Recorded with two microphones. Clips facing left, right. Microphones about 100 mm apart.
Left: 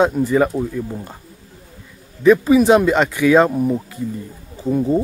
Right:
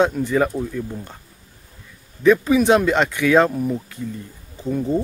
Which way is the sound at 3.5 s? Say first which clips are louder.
Left 4 dB; 30° left (ahead or behind).